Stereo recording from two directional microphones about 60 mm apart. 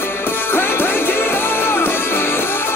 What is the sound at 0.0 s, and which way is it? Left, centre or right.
Music, left.